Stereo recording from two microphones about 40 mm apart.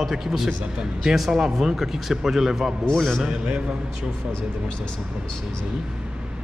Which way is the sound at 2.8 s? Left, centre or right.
Centre.